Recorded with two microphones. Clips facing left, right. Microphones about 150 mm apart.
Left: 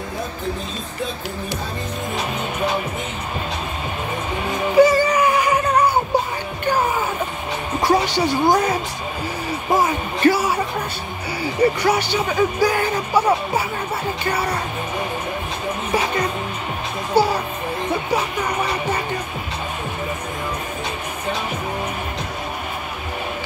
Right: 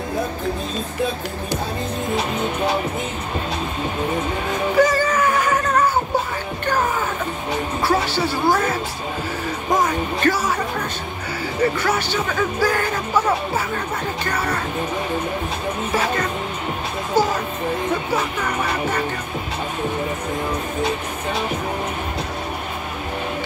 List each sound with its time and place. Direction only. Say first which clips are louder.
4.7 s music: left 4 dB; 15° left (ahead or behind)
11.8 s speech: left 2 dB; 15° left (ahead or behind)
14.2 s speech: left 2 dB; 10° left (ahead or behind)
17.1 s music: left 2 dB; 10° left (ahead or behind)